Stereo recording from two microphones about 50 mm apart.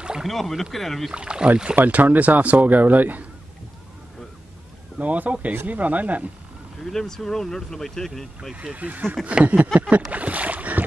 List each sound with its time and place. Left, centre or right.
0.2 s speech: centre
1.1 s speech: centre
1.8 s a man's voice: right
4.9 s a man's voice: right
6.8 s speech: centre
8.7 s a man's voice: right
10.1 s boat: right